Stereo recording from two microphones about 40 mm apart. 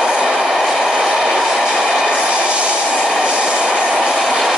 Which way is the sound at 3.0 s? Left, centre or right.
Centre.